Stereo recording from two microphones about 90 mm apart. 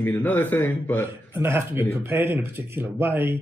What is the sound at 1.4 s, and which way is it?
Speech, 25° right (ahead or behind).